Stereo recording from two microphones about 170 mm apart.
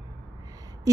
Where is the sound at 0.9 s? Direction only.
20° right (ahead or behind).